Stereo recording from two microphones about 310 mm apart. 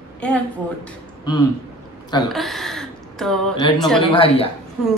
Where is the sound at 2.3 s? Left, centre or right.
Centre.